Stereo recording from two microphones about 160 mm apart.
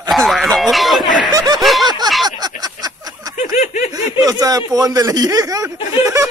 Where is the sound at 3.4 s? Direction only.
50° left (ahead or behind).